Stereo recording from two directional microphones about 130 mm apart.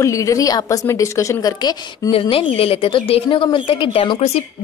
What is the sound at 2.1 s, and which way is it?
A woman's voice, 45° left (ahead or behind).